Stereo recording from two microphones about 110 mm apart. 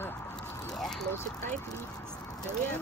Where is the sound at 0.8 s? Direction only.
5° left (ahead or behind).